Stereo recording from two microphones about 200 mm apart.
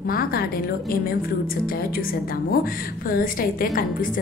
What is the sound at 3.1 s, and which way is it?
Speech, 45° left (ahead or behind).